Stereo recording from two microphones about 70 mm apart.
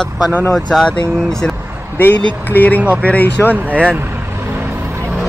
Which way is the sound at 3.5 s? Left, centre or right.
Right.